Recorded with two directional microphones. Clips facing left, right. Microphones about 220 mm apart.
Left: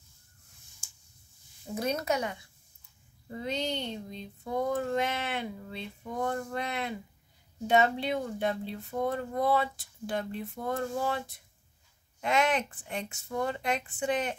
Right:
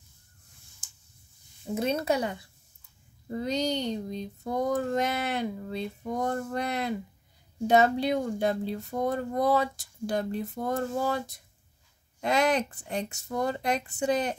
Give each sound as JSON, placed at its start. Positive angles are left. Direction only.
{"t": 1.8, "sound": "speech", "side_deg": -30}